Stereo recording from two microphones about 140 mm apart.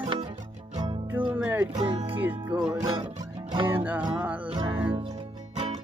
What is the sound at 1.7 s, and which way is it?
Music, 35° right (ahead or behind).